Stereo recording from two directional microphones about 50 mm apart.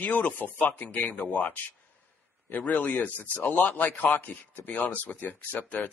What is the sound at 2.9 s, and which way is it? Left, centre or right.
Speech, left.